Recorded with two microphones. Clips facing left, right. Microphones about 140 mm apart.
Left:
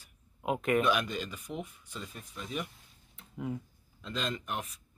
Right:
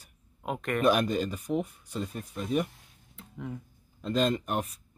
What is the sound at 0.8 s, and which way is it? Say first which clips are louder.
Speech: right 6 dB; 45° right (ahead or behind).